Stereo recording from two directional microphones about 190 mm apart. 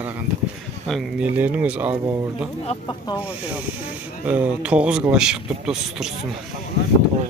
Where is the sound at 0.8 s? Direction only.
Centre (ahead or behind).